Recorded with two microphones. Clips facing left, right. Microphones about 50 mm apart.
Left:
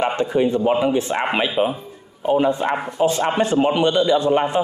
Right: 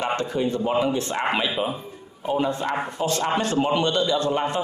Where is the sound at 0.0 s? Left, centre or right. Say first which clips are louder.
Left 5 dB; left.